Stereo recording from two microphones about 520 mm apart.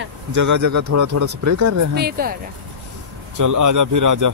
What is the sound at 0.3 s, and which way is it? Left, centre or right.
Speech, right.